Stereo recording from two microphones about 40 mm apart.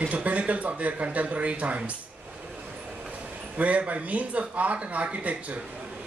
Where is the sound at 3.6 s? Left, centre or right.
Right.